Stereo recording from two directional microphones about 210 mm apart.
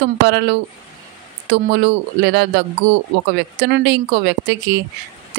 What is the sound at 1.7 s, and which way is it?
Speech, 50° right (ahead or behind).